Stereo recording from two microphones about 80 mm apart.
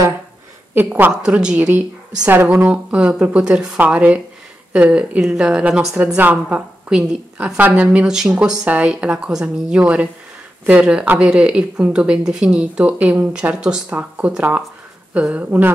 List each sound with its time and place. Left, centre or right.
0.7 s speech: right
1.2 s a woman's voice: centre
13.8 s speech: centre